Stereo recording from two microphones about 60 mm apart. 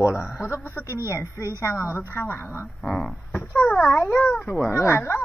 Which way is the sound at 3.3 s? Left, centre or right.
Left.